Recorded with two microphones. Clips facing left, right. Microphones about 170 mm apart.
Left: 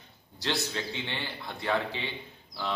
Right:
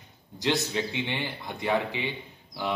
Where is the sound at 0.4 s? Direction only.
15° right (ahead or behind).